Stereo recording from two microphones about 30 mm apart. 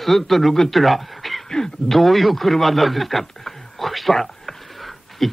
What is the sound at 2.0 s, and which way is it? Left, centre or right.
A man's voice, centre.